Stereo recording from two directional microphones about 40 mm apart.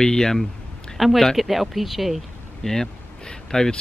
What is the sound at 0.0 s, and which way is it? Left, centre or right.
Speech, centre.